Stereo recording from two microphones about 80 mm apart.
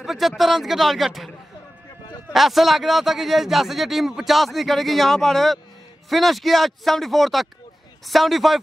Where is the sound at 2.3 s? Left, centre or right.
Centre.